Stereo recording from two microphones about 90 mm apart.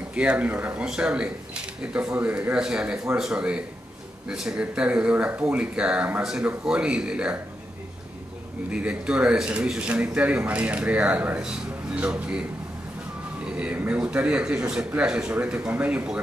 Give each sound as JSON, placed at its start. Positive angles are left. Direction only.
{"t": 0.1, "sound": "speech", "side_deg": -15}
{"t": 8.7, "sound": "speech", "side_deg": -10}
{"t": 13.5, "sound": "speech", "side_deg": -15}